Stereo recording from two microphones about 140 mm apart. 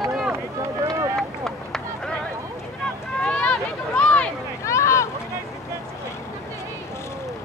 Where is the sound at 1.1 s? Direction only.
5° left (ahead or behind).